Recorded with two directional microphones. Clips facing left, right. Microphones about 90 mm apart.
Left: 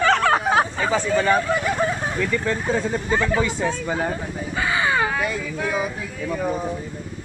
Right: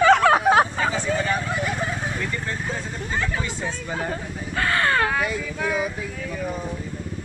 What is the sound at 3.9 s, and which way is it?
Speech, 5° left (ahead or behind).